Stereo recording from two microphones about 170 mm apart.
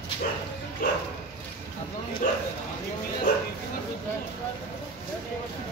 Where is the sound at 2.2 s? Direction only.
50° left (ahead or behind).